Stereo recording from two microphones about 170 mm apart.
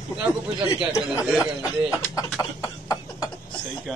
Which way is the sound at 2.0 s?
20° left (ahead or behind).